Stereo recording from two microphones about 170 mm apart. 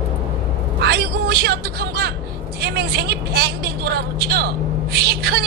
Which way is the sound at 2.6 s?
70° right (ahead or behind).